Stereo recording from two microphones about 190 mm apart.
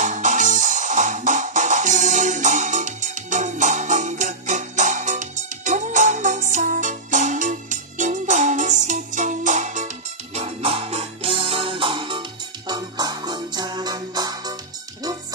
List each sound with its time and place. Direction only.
0.0 s music: 40° right (ahead or behind); by 14.5 s 20° right (ahead or behind)